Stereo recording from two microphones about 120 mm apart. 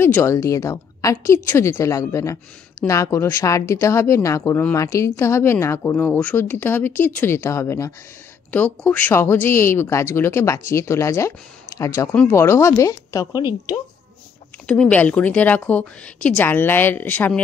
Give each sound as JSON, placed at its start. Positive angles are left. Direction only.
{"t": 0.0, "sound": "speech", "side_deg": 20}
{"t": 14.7, "sound": "a woman's voice", "side_deg": 10}